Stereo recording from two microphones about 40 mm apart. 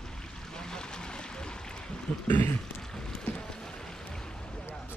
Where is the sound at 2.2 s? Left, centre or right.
Left.